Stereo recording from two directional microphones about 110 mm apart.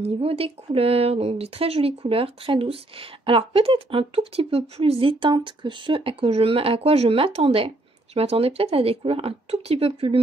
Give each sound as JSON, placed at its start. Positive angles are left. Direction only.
{"t": 0.0, "sound": "speech", "side_deg": -60}